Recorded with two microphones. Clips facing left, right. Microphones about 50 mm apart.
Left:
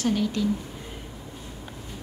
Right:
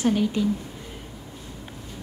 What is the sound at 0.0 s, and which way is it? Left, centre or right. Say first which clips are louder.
Speech: right 2 dB; centre.